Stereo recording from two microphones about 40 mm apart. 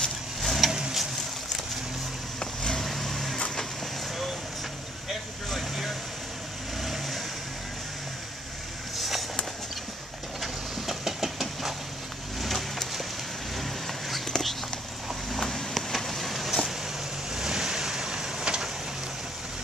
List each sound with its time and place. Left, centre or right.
0.4 s vehicle: centre
0.7 s vehicle: centre
2.8 s vehicle: centre
3.3 s vehicle: centre
5.6 s vehicle: centre
8.9 s vehicle: centre
10.4 s a sound: centre
13.6 s vehicle: centre
14.3 s a sound: centre
17.4 s vehicle: centre